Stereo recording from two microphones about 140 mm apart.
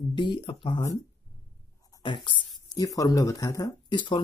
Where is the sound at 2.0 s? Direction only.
35° left (ahead or behind).